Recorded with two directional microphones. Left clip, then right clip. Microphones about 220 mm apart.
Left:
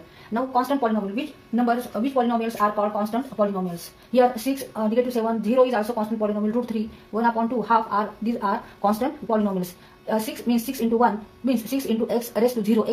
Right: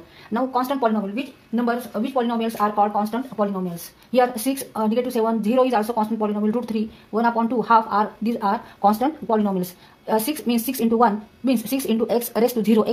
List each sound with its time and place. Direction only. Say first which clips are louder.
0.3 s speech: even; 50° right (ahead or behind)